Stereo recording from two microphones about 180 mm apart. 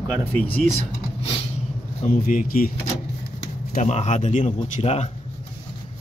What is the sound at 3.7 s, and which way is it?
Speech, 40° left (ahead or behind).